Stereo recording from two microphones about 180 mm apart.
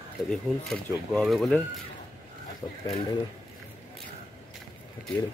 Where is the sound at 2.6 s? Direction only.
20° left (ahead or behind).